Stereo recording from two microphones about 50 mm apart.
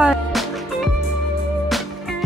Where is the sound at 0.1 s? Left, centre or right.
Centre.